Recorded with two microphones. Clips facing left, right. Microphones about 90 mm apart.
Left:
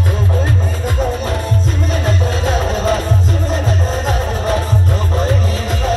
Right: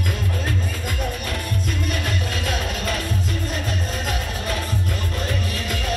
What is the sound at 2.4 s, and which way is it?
Music, 30° left (ahead or behind).